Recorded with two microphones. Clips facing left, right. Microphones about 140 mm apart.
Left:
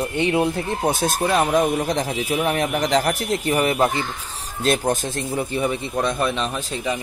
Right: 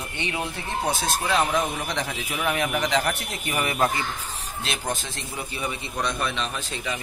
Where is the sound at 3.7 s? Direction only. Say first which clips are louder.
Left 4 dB; 25° left (ahead or behind).